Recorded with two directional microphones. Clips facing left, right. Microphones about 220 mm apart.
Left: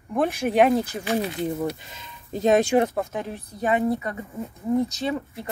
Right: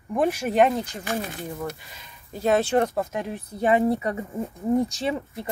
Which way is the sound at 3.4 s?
25° right (ahead or behind).